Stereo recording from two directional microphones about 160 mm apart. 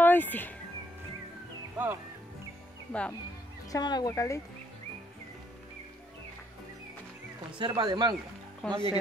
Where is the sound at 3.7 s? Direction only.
25° left (ahead or behind).